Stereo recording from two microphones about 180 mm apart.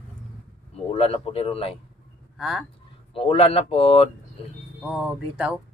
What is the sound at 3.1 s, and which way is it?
Speech, 30° left (ahead or behind).